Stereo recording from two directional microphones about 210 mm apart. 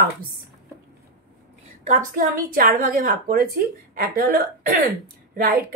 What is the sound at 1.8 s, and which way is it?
A woman's voice, 35° right (ahead or behind).